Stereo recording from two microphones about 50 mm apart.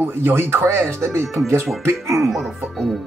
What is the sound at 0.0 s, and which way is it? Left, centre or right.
Speech, right.